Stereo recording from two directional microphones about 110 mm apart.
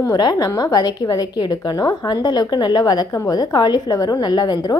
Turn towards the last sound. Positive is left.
turn(degrees=40)  # may be behind; listen again after turning